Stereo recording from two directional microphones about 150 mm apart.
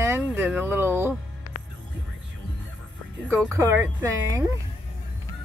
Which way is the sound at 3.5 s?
15° right (ahead or behind).